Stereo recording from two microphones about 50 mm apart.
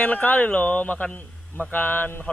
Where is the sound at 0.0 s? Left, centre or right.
Left.